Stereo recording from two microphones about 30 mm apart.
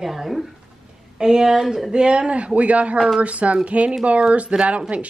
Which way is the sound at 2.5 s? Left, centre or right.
Right.